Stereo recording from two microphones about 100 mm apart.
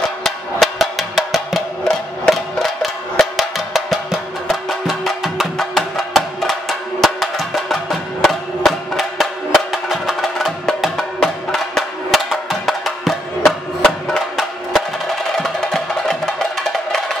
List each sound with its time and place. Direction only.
0.2 s music: centre (ahead or behind)